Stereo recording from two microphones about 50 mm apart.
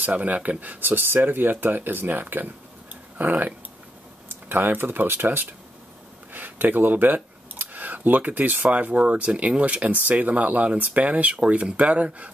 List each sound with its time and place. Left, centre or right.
0.0 s speech: right